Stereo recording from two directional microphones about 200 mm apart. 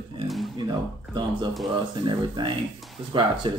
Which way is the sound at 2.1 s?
25° right (ahead or behind).